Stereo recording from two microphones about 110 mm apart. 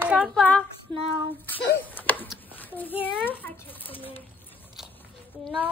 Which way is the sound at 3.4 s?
20° left (ahead or behind).